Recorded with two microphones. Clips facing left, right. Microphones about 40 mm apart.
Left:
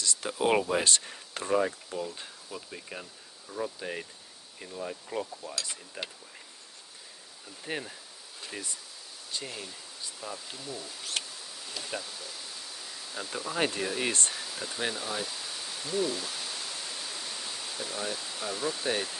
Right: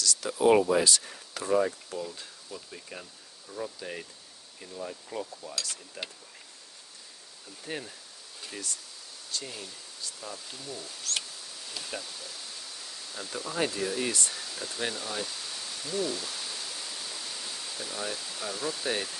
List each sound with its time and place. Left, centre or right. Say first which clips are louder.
0.0 s speech: right 4 dB; left
7.6 s speech: left 2 dB; centre
11.1 s pink noise: left 3 dB; centre
13.7 s speech: even; left
14.3 s a sound: left 1 dB; centre